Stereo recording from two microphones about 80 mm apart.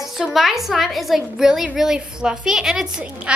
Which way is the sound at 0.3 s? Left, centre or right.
Centre.